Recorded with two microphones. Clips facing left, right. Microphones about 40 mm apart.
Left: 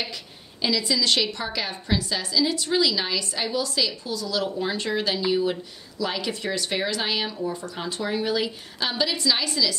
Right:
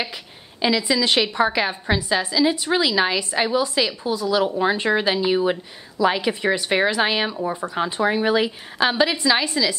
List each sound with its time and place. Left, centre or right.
0.6 s a woman's voice: right